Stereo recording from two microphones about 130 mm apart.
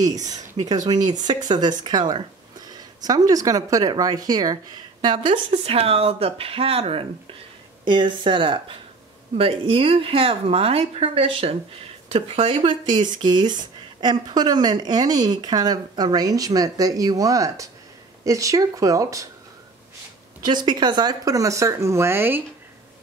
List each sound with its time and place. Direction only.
0.3 s speech: 30° right (ahead or behind)
5.0 s speech: 40° right (ahead or behind)
5.5 s speech: 50° right (ahead or behind)
7.8 s speech: 40° right (ahead or behind)
12.9 s speech: 35° right (ahead or behind)
20.4 s speech: 35° right (ahead or behind); by 22.4 s 15° right (ahead or behind)